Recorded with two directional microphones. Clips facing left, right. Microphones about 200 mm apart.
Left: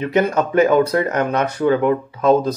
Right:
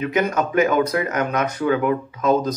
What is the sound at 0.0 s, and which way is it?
Speech, 30° left (ahead or behind).